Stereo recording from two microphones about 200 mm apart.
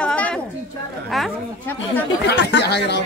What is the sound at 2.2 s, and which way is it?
Speech, 60° left (ahead or behind).